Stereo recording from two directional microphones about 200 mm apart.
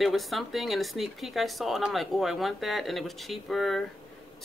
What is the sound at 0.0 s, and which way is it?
Speech, centre (ahead or behind).